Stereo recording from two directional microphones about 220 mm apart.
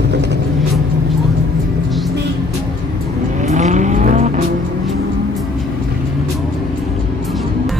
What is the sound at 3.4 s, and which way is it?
Vehicle, 30° right (ahead or behind).